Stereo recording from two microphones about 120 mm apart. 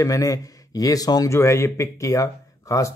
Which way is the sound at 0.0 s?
30° left (ahead or behind).